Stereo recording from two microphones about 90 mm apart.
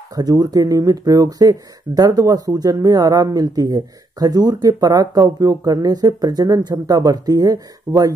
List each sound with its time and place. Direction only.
0.1 s speech: 45° right (ahead or behind)